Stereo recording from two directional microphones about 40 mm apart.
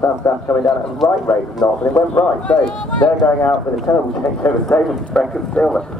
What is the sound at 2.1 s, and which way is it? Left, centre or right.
Speech, left.